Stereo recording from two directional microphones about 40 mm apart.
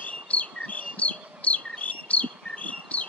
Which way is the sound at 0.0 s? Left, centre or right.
Left.